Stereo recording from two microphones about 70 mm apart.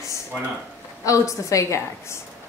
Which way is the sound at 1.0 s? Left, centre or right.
Left.